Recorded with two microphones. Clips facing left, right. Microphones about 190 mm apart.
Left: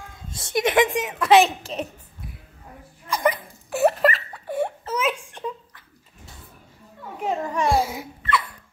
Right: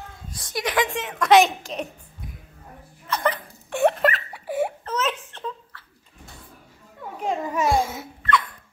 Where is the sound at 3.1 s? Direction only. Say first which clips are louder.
Left 2 dB; 10° left (ahead or behind); by 4.7 s 5° right (ahead or behind).